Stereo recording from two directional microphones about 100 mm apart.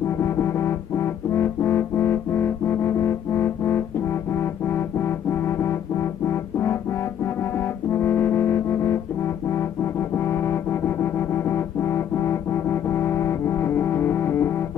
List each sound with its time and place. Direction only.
0.2 s music: 25° left (ahead or behind)